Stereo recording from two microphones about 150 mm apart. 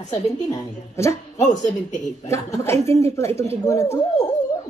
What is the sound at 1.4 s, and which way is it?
Speech, 55° left (ahead or behind).